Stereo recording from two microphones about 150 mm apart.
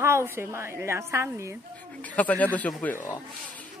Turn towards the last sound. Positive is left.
turn(degrees=10)  # may be behind; listen again after turning